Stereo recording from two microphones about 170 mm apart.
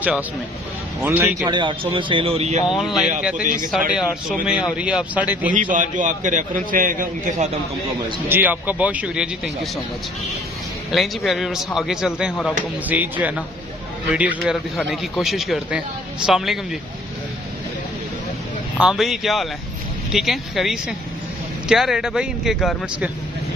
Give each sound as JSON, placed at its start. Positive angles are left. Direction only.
{"t": 1.0, "sound": "speech", "side_deg": -10}
{"t": 1.4, "sound": "speech", "side_deg": -25}
{"t": 2.7, "sound": "a man's voice", "side_deg": 0}
{"t": 3.4, "sound": "a man's voice", "side_deg": -55}
{"t": 3.9, "sound": "a man's voice", "side_deg": -5}
{"t": 5.5, "sound": "a man's voice", "side_deg": -50}
{"t": 8.3, "sound": "speech", "side_deg": -10}
{"t": 10.9, "sound": "a man's voice", "side_deg": 0}
{"t": 18.8, "sound": "a man's voice", "side_deg": 0}